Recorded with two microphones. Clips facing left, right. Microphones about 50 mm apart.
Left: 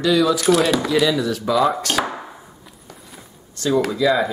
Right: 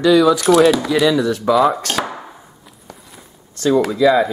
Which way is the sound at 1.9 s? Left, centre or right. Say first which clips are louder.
Even; centre.